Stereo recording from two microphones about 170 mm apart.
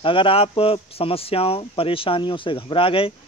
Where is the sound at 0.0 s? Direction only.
30° left (ahead or behind).